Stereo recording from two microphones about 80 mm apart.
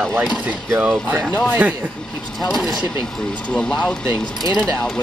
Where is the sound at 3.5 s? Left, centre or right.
Centre.